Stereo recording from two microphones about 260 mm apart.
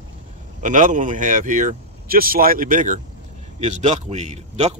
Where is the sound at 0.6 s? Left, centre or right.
Right.